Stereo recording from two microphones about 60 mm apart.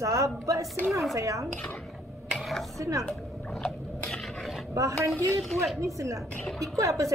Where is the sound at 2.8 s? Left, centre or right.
Right.